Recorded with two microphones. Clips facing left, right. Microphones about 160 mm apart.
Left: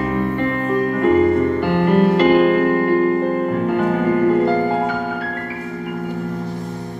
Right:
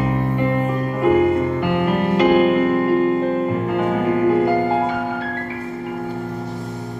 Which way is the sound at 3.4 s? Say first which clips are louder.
Left 2 dB; centre (ahead or behind).